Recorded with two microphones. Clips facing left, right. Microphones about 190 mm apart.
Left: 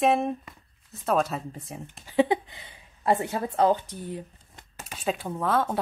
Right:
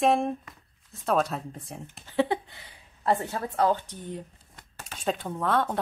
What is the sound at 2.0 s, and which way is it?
Speech, 15° left (ahead or behind).